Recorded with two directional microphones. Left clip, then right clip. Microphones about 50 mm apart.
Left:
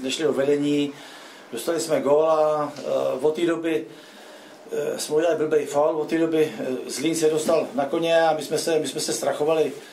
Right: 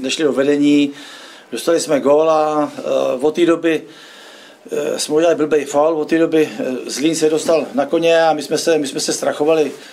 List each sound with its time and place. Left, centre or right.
0.0 s speech: right